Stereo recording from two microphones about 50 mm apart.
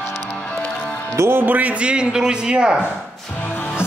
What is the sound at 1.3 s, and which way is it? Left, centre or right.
Speech, right.